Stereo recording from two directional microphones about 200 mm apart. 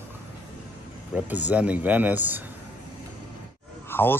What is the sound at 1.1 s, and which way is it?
A man's voice, 10° right (ahead or behind).